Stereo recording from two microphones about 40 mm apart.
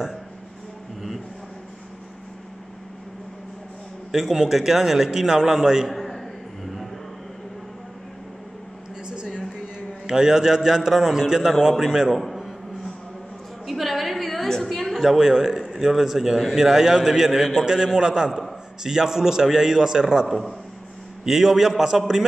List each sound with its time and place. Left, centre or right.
4.1 s a man's voice: centre
5.9 s a sound: centre
10.0 s a man's voice: centre
12.2 s a sound: centre
15.0 s a man's voice: centre
20.2 s a man's voice: centre
21.2 s a man's voice: centre